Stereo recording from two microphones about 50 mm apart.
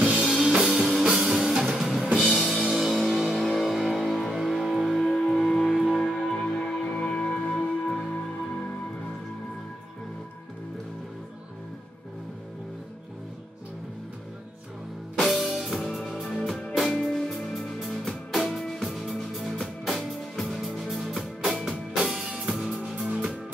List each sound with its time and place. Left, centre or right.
0.0 s music: right
0.6 s music: centre
1.8 s drum kit: centre
2.1 s music: centre
5.1 s music: centre
5.4 s music: centre
6.1 s music: centre
15.1 s music: centre
21.9 s music: centre